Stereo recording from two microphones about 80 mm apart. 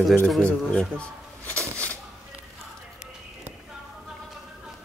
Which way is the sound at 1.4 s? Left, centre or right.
Centre.